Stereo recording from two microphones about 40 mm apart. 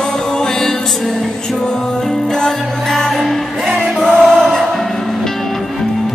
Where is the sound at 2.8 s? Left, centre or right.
Centre.